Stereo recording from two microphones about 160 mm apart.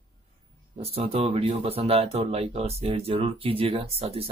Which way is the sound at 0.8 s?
40° right (ahead or behind).